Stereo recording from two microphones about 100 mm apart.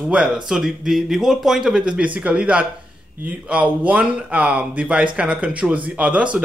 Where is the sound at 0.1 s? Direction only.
10° right (ahead or behind).